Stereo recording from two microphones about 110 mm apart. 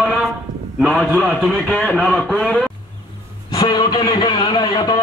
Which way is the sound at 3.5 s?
40° left (ahead or behind).